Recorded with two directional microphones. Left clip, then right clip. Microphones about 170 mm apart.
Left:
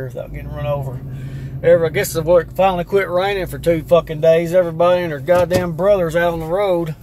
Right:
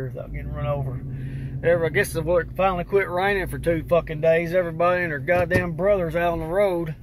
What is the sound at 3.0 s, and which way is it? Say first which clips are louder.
Speech: left 5 dB; 10° left (ahead or behind).